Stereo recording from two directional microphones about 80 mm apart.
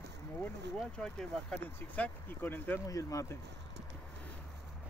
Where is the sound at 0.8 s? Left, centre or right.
Centre; by 2.8 s left.